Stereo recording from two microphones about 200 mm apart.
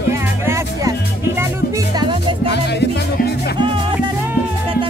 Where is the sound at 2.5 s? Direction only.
55° left (ahead or behind).